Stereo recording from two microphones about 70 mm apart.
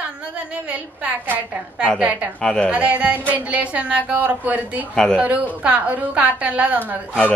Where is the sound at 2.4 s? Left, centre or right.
Centre.